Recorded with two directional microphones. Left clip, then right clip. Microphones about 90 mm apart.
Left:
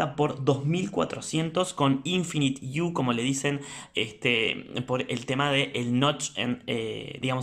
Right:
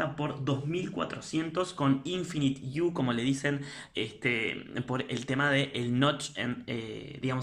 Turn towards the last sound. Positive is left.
turn(degrees=25)  # may be behind; listen again after turning